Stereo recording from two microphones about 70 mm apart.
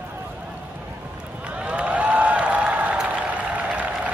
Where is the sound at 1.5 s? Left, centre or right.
Centre.